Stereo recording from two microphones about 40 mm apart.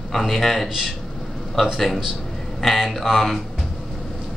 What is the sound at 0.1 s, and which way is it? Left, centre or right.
Speech, centre.